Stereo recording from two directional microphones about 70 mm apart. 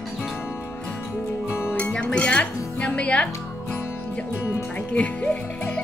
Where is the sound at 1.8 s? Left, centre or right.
Centre.